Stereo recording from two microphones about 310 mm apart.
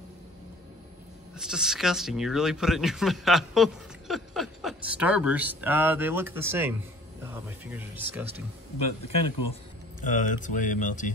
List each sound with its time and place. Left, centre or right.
1.3 s speech: centre
10.0 s speech: left